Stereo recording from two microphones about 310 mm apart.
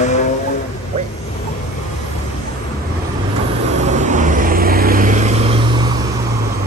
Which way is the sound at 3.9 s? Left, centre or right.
Right.